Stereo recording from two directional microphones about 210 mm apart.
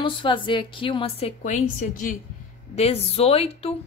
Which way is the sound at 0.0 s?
25° left (ahead or behind).